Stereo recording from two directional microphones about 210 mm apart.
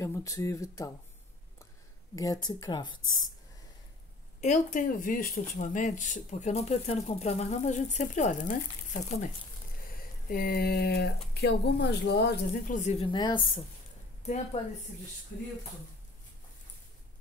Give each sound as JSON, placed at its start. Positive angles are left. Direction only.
{"t": 0.0, "sound": "speech", "side_deg": 15}
{"t": 2.1, "sound": "speech", "side_deg": 15}
{"t": 4.4, "sound": "speech", "side_deg": 35}
{"t": 12.7, "sound": "speech", "side_deg": 30}
{"t": 14.2, "sound": "speech", "side_deg": 35}